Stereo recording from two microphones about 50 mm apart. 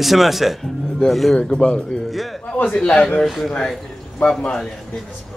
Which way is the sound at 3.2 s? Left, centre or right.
Centre.